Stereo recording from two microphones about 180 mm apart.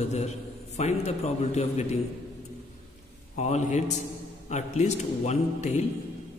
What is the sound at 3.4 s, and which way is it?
A man's voice, 40° left (ahead or behind).